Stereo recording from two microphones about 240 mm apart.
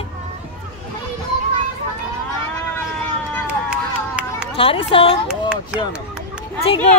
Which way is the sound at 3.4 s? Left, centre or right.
Centre.